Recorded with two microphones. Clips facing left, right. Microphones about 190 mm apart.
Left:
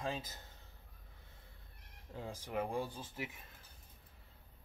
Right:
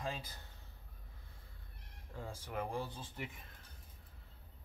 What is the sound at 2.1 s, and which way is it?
Speech, 20° left (ahead or behind).